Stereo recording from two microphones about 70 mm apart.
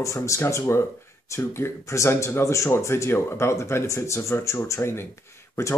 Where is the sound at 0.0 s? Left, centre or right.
Left.